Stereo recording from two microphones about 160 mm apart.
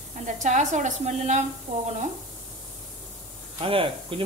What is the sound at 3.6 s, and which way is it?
Speech, 35° right (ahead or behind).